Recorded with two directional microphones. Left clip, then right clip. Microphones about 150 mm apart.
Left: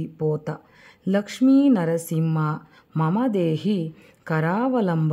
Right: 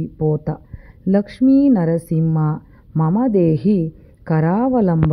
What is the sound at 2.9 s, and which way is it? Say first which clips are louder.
Speech: right 4 dB; 5° right (ahead or behind).